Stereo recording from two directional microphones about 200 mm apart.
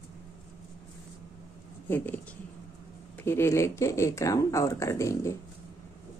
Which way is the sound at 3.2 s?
10° left (ahead or behind).